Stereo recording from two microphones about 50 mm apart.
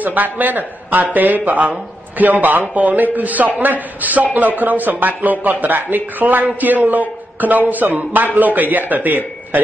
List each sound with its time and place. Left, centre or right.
0.0 s a man's voice: right